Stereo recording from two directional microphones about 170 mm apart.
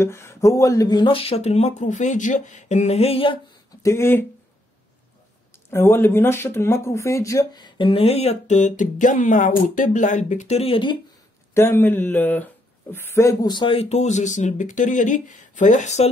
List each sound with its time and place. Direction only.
0.0 s speech: 15° left (ahead or behind); by 3.3 s 35° left (ahead or behind)
3.8 s speech: 15° left (ahead or behind)
5.7 s speech: 15° left (ahead or behind); by 11.0 s 30° left (ahead or behind)
11.5 s speech: 15° left (ahead or behind); by 16.1 s 45° left (ahead or behind)